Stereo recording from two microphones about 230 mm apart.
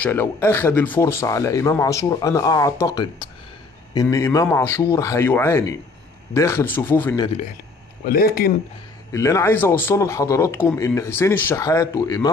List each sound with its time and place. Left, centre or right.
0.0 s speech: centre
8.0 s speech: left
9.1 s speech: centre